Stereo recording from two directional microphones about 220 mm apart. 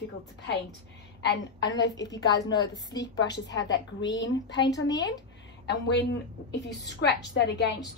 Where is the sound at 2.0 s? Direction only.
15° left (ahead or behind).